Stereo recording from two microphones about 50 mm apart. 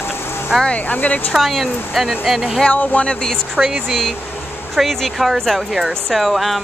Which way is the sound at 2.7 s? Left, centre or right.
Left.